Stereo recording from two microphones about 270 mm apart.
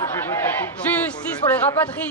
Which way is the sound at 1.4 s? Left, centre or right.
Centre.